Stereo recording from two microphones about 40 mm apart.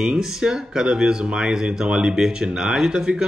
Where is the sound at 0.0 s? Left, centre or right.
Centre.